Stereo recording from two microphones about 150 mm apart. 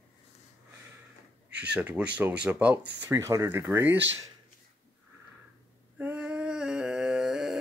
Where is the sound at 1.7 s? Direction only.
10° right (ahead or behind).